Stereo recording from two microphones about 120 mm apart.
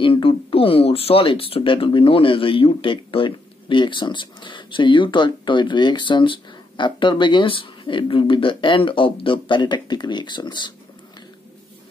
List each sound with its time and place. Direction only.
0.0 s speech: 45° left (ahead or behind)